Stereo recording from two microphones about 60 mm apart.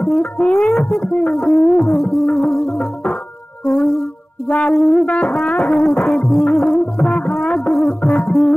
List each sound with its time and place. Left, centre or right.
0.0 s music: centre
1.0 s a sound: centre
1.5 s music: centre
4.5 s a sound: left
4.7 s music: centre
7.1 s music: left
7.5 s music: centre
8.3 s music: centre